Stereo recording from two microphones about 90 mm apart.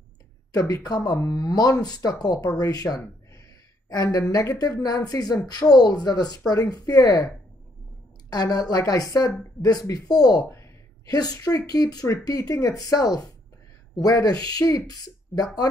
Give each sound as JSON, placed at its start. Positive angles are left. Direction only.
{"t": 0.5, "sound": "speech", "side_deg": 45}
{"t": 10.5, "sound": "a sound", "side_deg": 35}
{"t": 11.1, "sound": "speech", "side_deg": 45}